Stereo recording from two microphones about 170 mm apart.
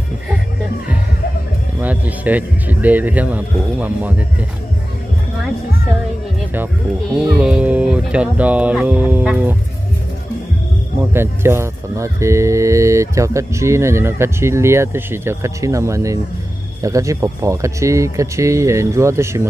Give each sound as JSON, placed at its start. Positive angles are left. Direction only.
{"t": 1.8, "sound": "speech", "side_deg": -10}
{"t": 7.2, "sound": "speech", "side_deg": -5}
{"t": 11.1, "sound": "speech", "side_deg": -15}